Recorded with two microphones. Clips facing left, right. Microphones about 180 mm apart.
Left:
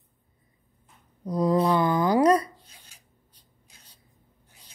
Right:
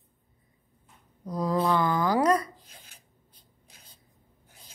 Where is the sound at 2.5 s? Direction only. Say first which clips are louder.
Right 1 dB; 90° right.